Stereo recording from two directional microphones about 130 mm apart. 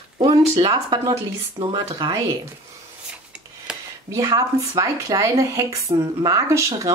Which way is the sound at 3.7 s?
5° right (ahead or behind).